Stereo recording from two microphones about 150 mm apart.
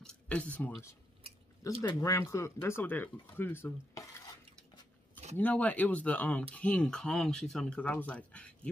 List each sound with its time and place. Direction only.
0.0 s a sound: 10° left (ahead or behind)
1.6 s speech: 20° left (ahead or behind)
5.4 s speech: 10° left (ahead or behind)